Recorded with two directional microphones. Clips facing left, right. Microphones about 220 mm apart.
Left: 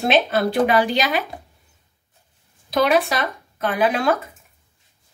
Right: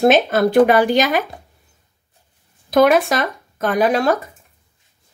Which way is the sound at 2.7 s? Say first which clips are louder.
Right 5 dB; 50° right (ahead or behind).